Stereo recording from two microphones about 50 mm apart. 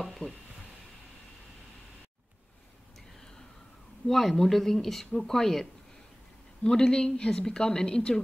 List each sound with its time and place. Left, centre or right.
0.0 s speech: centre
4.1 s a woman's voice: centre